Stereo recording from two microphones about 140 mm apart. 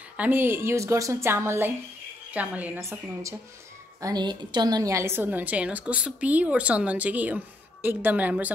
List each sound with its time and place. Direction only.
0.2 s a woman's voice: 15° right (ahead or behind)